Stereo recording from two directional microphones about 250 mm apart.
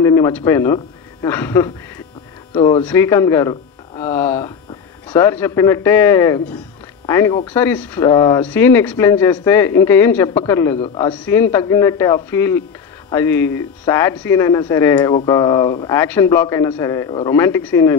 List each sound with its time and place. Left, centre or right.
0.0 s speech: centre
8.1 s speech: left
8.4 s a man's voice: centre